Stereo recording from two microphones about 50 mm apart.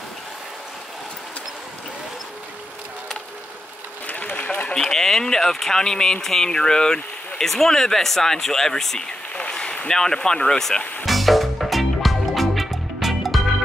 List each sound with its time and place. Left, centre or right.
4.1 s run: left
4.8 s speech: centre
11.1 s music: centre